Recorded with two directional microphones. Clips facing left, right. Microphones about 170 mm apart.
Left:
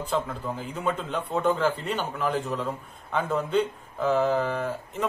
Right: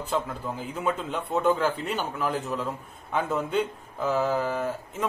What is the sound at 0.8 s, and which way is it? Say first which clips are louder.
Speech: even; centre (ahead or behind).